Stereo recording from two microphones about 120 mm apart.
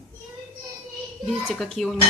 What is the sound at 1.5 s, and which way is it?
Speech, centre (ahead or behind).